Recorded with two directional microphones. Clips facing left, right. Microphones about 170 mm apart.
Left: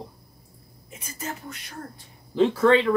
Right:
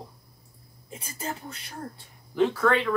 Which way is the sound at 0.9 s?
30° right (ahead or behind).